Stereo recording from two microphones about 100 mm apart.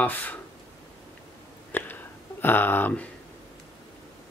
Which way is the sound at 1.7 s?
20° left (ahead or behind).